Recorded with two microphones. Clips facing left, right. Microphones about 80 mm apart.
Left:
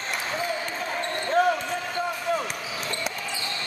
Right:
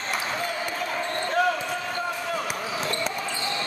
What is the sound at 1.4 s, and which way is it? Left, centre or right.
Basketball bounce, left.